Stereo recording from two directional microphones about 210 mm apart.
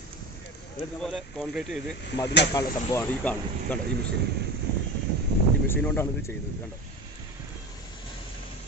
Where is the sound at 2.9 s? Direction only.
10° left (ahead or behind).